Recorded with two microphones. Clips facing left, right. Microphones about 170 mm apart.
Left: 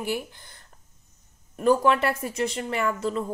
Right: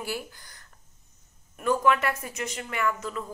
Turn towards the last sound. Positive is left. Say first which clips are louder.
# left 4 dB
turn(degrees=30)  # may be behind; listen again after turning